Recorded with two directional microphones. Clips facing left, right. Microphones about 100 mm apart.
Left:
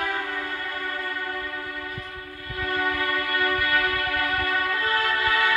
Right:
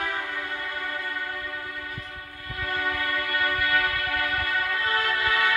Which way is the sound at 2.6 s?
30° right (ahead or behind).